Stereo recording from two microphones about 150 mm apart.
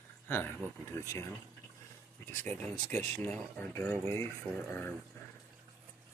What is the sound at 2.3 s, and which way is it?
Speech, 10° left (ahead or behind).